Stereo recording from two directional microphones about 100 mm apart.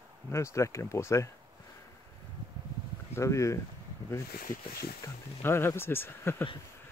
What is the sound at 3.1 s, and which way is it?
Speech, 30° left (ahead or behind).